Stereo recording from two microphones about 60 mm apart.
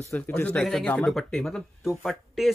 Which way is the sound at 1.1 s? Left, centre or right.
Centre.